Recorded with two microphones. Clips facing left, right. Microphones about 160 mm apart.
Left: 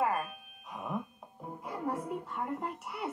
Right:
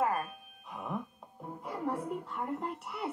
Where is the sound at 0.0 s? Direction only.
Centre (ahead or behind).